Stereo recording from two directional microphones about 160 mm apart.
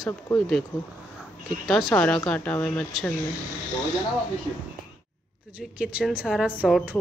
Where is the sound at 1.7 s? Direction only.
Centre (ahead or behind).